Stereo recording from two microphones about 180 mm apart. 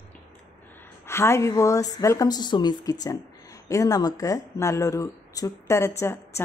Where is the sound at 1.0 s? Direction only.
15° left (ahead or behind).